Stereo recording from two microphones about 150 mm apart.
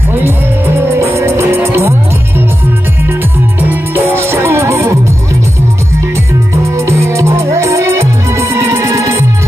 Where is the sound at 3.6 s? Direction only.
10° right (ahead or behind).